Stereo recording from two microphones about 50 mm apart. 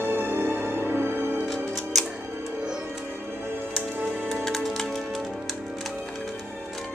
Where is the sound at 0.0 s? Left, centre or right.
Right.